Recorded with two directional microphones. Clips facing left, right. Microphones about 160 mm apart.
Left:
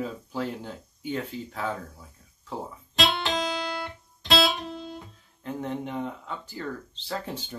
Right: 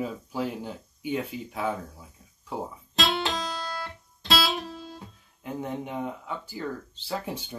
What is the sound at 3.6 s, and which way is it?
Guitar, 15° left (ahead or behind).